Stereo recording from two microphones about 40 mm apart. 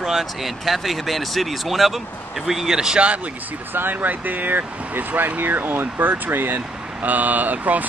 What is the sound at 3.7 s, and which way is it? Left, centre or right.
Speech, right.